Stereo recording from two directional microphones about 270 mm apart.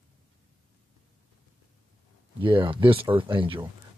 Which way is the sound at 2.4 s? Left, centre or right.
Centre.